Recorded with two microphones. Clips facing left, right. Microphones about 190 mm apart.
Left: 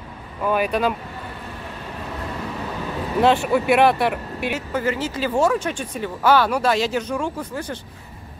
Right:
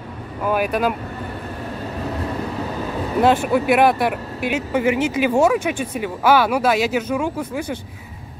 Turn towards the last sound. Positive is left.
turn(degrees=-10)  # may be behind; listen again after turning